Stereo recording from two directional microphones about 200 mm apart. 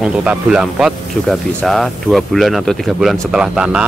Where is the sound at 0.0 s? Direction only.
5° right (ahead or behind).